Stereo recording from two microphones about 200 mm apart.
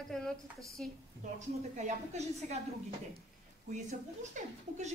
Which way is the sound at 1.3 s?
35° right (ahead or behind).